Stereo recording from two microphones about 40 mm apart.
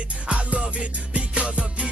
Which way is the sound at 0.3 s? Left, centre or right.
Right.